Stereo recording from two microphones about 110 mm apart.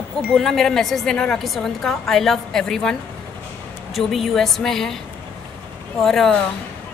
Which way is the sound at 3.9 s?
Centre (ahead or behind).